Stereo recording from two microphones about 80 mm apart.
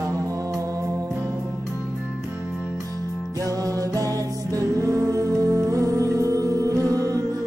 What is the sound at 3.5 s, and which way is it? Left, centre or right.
Music, right.